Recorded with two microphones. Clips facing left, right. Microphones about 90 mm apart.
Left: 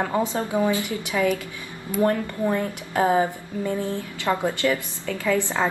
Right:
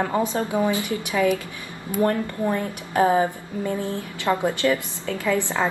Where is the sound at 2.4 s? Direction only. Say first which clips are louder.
Left 2 dB; 20° right (ahead or behind).